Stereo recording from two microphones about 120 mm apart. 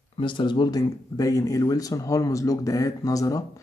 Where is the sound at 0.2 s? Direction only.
40° left (ahead or behind).